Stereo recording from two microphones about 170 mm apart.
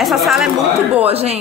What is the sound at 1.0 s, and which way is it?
Speech, 35° right (ahead or behind).